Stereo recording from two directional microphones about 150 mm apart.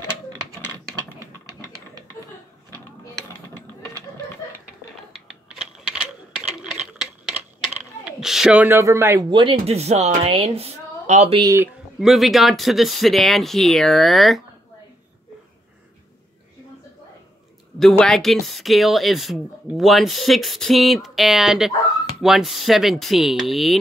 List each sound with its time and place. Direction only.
5.1 s a sound: 5° right (ahead or behind)
9.3 s speech: 35° right (ahead or behind)
12.0 s speech: centre (ahead or behind)
17.7 s speech: 5° left (ahead or behind)